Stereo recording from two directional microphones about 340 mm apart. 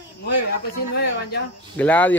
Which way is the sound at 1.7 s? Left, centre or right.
Centre.